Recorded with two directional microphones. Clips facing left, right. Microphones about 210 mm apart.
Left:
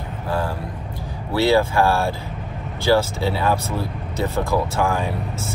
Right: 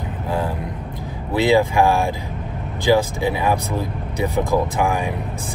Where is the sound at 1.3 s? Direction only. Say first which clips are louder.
Right 1 dB; 15° right (ahead or behind).